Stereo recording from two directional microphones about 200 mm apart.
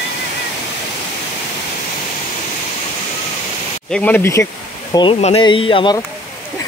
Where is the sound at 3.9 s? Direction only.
5° left (ahead or behind).